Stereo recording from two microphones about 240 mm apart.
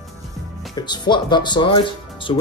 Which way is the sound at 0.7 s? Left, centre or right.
Centre.